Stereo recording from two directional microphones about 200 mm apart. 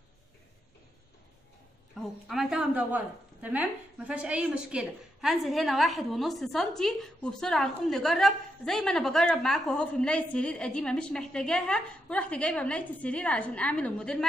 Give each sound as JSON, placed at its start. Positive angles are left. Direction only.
{"t": 2.0, "sound": "a woman's voice", "side_deg": 0}
{"t": 4.1, "sound": "a woman's voice", "side_deg": -5}